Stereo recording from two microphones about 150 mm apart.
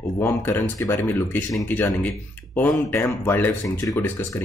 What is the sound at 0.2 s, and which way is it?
Speech, 15° left (ahead or behind).